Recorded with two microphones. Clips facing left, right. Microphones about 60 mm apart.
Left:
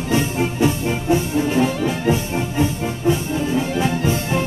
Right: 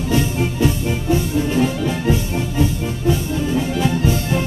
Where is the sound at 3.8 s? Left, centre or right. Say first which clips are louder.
Right 1 dB; left.